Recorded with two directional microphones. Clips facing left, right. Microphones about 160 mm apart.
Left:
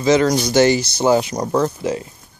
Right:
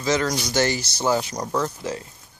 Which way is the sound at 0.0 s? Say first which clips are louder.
Left 8 dB; 20° left (ahead or behind).